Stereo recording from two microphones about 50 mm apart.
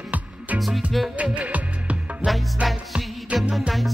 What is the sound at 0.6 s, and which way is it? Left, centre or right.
Music, centre.